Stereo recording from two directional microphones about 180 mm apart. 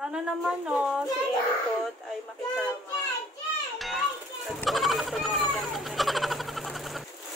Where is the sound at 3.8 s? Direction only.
Centre (ahead or behind).